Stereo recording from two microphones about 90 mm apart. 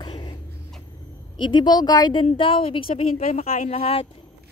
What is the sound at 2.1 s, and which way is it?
Speech, 70° left (ahead or behind).